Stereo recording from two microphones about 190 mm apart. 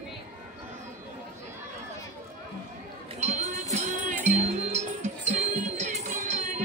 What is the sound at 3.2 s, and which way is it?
Music, 35° right (ahead or behind).